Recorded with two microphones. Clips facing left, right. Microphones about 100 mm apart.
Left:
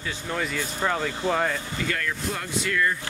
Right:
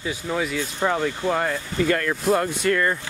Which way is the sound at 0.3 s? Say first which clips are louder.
Right 3 dB; 5° right (ahead or behind).